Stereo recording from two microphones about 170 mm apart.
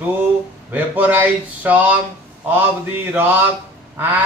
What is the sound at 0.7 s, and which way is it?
Speech, 10° right (ahead or behind).